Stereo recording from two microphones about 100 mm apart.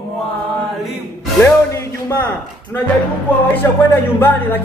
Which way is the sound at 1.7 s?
30° left (ahead or behind).